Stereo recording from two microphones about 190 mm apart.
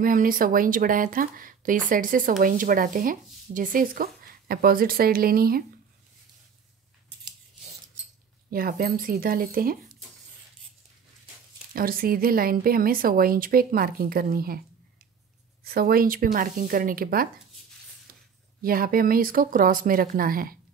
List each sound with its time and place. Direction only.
0.0 s speech: 45° right (ahead or behind)
8.5 s speech: 50° right (ahead or behind)
11.7 s speech: 50° right (ahead or behind)
15.6 s speech: 50° right (ahead or behind)
18.6 s speech: 50° right (ahead or behind)